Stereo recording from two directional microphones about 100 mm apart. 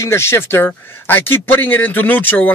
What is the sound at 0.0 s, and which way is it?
A man's voice, 25° left (ahead or behind).